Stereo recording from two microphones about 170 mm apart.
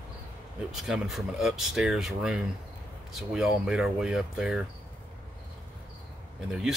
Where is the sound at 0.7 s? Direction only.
5° right (ahead or behind).